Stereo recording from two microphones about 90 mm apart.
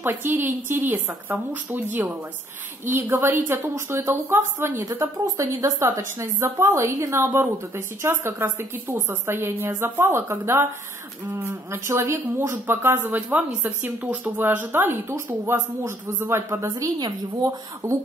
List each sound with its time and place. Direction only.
0.0 s a woman's voice: 25° right (ahead or behind); by 17.9 s 45° right (ahead or behind)